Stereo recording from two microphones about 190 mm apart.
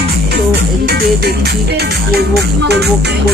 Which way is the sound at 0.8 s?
55° right (ahead or behind).